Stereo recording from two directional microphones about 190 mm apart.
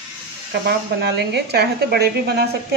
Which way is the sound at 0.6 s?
60° right (ahead or behind).